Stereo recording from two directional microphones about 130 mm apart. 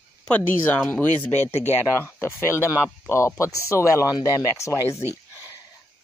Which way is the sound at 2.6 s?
20° left (ahead or behind).